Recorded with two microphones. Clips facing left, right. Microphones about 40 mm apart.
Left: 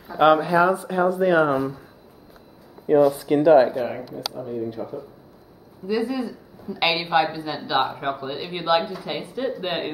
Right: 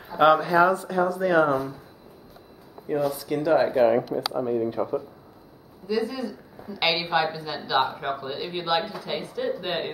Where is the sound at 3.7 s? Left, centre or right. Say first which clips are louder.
Right 7 dB; right.